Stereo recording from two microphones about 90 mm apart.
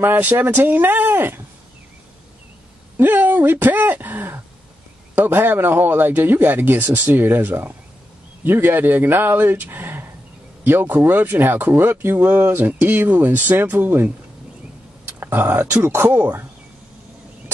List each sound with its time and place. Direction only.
0.0 s a man's voice: 20° right (ahead or behind)
3.0 s a sound: 20° right (ahead or behind)
5.1 s a man's voice: 20° right (ahead or behind)
15.1 s speech: 20° right (ahead or behind)
15.8 s a man's voice: 30° right (ahead or behind)